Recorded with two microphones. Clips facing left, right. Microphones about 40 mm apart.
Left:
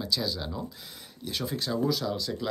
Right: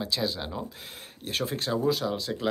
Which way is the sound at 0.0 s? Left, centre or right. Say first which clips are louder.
Right 1 dB; right.